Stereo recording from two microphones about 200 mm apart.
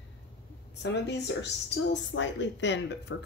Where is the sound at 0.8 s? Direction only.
60° left (ahead or behind).